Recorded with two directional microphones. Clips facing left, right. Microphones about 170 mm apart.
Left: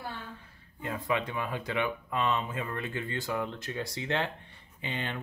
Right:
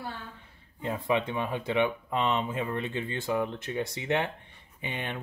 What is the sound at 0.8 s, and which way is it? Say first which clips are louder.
Speech: right 3 dB; 25° right (ahead or behind).